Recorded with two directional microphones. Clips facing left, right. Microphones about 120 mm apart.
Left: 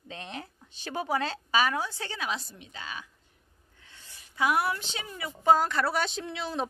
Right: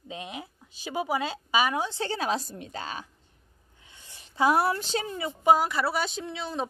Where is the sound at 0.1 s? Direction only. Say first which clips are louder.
Right 2 dB; 10° right (ahead or behind); by 3.1 s 35° right (ahead or behind).